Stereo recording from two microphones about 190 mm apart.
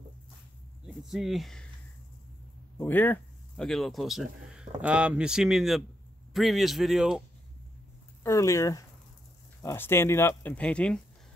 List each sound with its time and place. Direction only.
0.8 s speech: centre (ahead or behind)
2.8 s speech: 10° left (ahead or behind)
8.2 s speech: 15° left (ahead or behind)